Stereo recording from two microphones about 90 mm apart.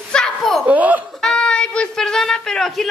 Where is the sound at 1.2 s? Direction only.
10° left (ahead or behind).